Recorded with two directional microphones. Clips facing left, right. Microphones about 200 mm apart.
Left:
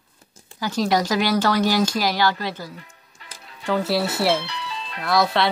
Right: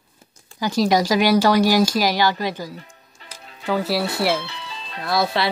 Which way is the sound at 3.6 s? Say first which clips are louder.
Even; 5° right (ahead or behind).